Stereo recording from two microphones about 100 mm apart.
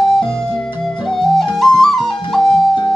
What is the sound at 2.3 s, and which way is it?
Music, 5° left (ahead or behind).